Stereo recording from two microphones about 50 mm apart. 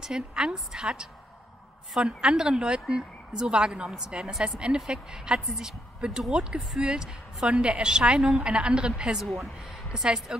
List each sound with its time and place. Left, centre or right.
0.0 s a woman's voice: centre
9.2 s a woman's voice: centre